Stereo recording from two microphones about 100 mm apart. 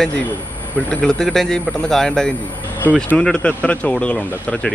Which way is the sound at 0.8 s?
5° left (ahead or behind).